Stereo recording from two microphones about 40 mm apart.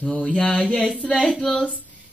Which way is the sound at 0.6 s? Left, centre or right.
Centre.